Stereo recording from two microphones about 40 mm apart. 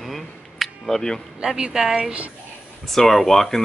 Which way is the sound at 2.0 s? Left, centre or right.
Right.